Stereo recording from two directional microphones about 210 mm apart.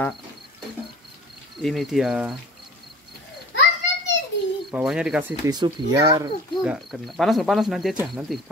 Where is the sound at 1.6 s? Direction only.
Centre (ahead or behind).